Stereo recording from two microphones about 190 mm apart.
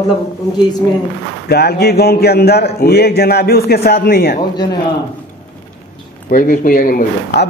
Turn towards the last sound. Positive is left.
turn(degrees=55)  # may be behind; listen again after turning